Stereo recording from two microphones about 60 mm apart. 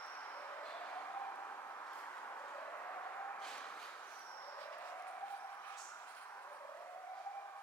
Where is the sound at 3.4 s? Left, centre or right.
Left.